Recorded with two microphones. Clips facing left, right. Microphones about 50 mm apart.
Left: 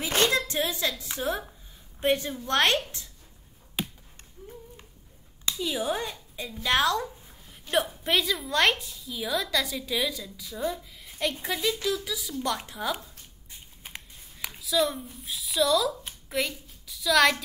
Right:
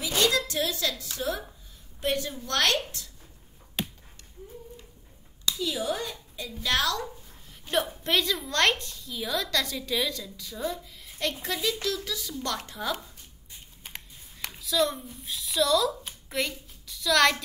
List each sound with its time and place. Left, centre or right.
0.0 s a sound: left
0.4 s a woman's voice: left
3.8 s chop: centre
5.4 s a woman's voice: left
8.0 s a woman's voice: centre
13.8 s computer keyboard: centre